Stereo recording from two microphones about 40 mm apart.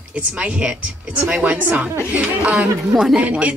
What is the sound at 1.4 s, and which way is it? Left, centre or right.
Speech, right.